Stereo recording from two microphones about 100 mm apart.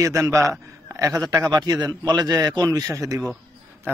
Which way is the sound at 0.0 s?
30° right (ahead or behind).